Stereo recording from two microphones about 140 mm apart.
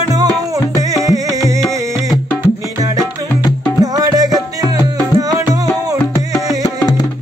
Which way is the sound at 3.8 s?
25° right (ahead or behind).